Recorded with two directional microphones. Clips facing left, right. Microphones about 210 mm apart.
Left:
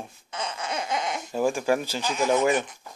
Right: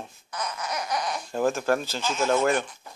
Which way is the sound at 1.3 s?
10° left (ahead or behind).